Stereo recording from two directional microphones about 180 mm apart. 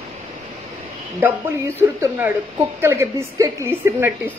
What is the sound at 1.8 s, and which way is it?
A woman's voice, 10° right (ahead or behind).